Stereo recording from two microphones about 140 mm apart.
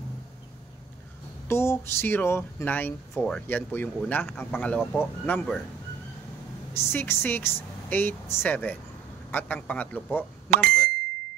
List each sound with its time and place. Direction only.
1.5 s speech: 15° left (ahead or behind)
6.7 s speech: 15° left (ahead or behind)
10.5 s speech: 90° right